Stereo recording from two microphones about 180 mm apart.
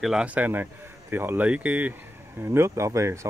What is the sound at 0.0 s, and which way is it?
Speech, 5° right (ahead or behind).